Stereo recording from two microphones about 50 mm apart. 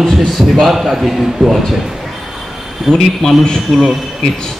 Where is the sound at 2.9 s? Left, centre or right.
Centre.